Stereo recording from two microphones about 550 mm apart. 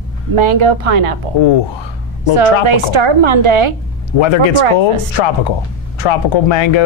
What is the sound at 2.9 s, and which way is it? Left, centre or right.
Speech, right.